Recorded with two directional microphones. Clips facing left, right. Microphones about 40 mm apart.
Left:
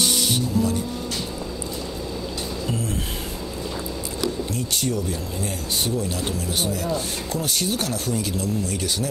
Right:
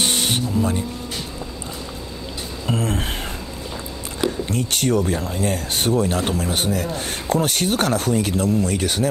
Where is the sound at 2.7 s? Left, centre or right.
Right.